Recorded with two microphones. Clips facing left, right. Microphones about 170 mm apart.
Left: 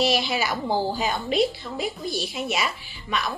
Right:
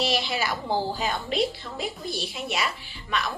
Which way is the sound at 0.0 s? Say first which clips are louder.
Left 3 dB; 5° left (ahead or behind).